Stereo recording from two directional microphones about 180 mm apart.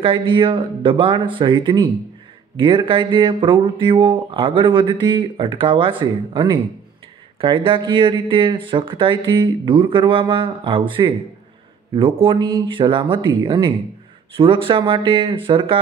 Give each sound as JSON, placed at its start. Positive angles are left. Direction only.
{"t": 0.0, "sound": "speech", "side_deg": -30}